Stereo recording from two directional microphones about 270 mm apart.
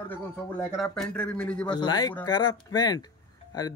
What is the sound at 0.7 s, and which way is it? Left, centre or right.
Speech, centre.